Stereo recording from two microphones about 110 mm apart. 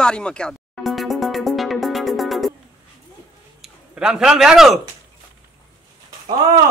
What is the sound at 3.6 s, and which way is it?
Speech, 5° right (ahead or behind).